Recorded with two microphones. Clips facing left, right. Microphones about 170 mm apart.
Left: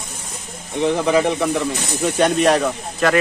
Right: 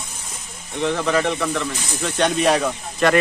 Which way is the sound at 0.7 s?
15° left (ahead or behind).